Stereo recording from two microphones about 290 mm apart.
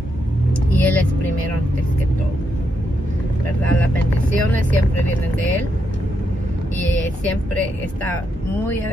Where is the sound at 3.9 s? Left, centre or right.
Right.